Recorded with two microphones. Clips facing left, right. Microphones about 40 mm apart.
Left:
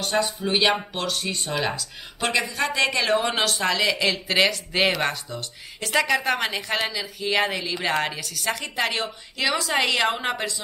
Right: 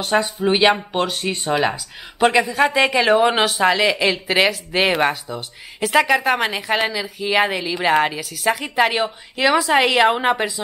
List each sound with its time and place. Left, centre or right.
0.0 s speech: centre